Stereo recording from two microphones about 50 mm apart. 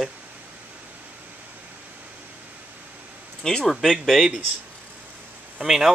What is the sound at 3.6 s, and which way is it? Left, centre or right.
Speech, centre.